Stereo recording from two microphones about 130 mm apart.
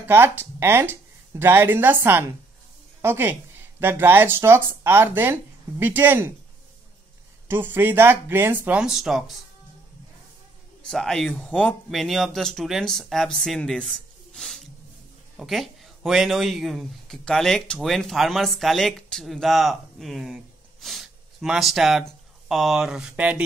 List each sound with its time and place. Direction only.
0.0 s a woman's voice: 15° right (ahead or behind)
7.4 s speech: 15° right (ahead or behind); by 9.4 s centre (ahead or behind)
10.9 s a man's voice: 5° left (ahead or behind)